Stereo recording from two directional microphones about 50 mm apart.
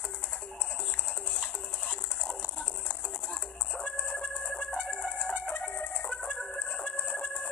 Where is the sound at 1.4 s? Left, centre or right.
Left.